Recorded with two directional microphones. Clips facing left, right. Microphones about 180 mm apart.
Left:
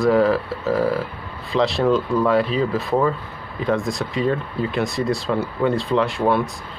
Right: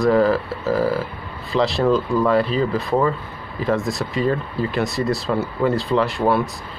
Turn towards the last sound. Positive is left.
turn(degrees=0)  # may be behind; listen again after turning